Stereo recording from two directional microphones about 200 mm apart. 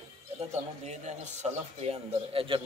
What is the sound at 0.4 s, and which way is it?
A man's voice, 35° right (ahead or behind).